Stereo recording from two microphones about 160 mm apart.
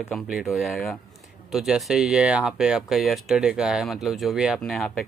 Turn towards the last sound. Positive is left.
turn(degrees=0)  # may be behind; listen again after turning